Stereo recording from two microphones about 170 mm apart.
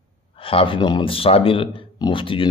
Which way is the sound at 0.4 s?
30° left (ahead or behind).